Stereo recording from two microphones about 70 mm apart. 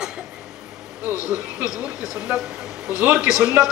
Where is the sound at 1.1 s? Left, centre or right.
Left.